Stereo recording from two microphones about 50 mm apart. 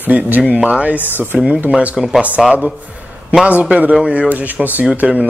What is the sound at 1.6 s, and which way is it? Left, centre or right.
Speech, right.